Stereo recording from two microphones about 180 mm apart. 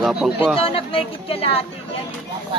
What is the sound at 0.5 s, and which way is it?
Speech, 30° left (ahead or behind).